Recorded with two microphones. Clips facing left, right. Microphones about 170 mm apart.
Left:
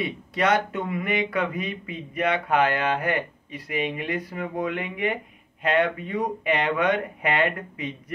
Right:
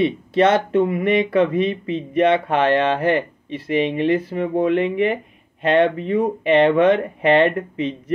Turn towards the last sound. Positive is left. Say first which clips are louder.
# right 8 dB
turn(degrees=-30)  # may be behind; listen again after turning